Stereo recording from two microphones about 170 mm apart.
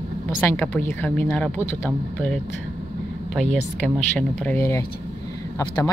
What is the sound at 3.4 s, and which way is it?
A woman's voice, 5° left (ahead or behind).